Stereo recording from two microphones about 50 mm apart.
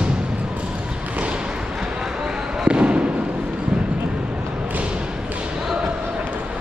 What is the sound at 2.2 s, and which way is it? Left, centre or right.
Fireworks, centre.